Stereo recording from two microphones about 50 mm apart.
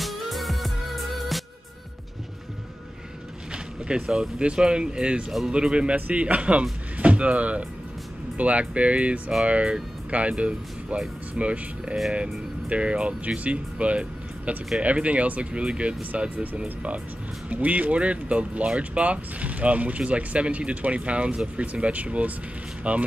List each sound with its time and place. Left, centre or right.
0.0 s music: centre
3.5 s speech: centre
17.5 s speech: right